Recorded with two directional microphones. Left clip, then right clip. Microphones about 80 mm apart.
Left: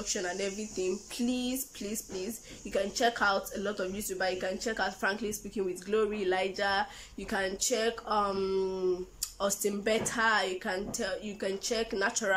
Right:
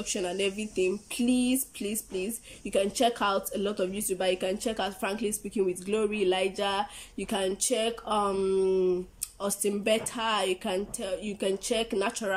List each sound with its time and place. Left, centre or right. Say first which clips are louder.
0.0 s speech: right 4 dB; right